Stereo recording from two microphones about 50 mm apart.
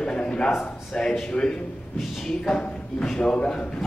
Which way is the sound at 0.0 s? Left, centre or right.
Centre.